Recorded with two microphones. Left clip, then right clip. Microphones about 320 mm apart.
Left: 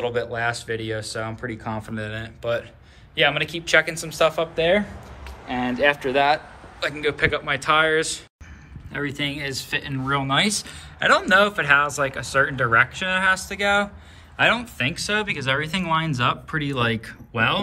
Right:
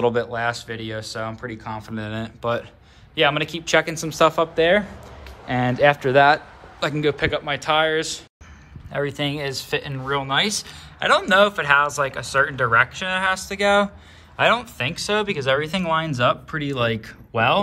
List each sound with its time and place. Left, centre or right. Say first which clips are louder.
0.0 s speech: right 3 dB; centre; by 4.9 s right
6.1 s speech: right 4 dB; centre